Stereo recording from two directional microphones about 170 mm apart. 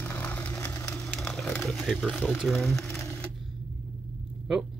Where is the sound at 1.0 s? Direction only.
Centre (ahead or behind).